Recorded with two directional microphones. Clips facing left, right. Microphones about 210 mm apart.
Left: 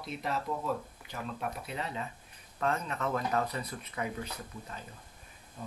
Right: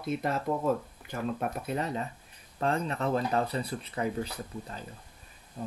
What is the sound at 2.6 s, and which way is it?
Speech, 30° right (ahead or behind).